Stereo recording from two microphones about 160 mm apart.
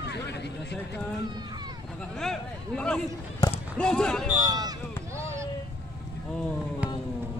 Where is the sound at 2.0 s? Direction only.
5° left (ahead or behind).